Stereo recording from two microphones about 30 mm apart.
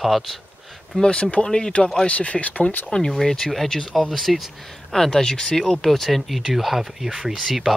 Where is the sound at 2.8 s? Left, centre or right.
Left.